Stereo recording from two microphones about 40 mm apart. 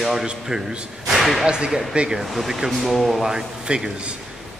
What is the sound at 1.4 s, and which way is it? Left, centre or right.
Speech, right.